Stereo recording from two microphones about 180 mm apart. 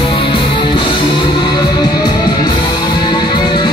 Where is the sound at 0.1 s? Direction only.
30° left (ahead or behind).